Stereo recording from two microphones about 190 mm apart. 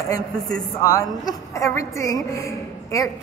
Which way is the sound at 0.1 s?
20° left (ahead or behind).